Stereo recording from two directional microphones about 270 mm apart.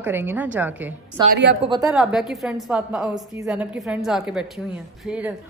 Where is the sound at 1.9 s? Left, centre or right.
Centre.